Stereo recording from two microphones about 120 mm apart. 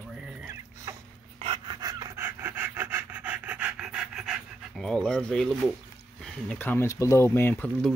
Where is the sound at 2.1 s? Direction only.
20° right (ahead or behind); by 5.5 s 5° left (ahead or behind).